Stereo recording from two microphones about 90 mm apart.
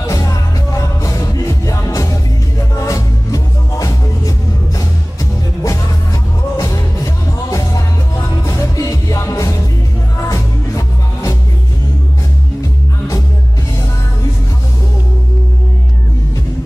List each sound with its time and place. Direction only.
0.0 s music: 35° left (ahead or behind)
6.5 s music: 40° left (ahead or behind)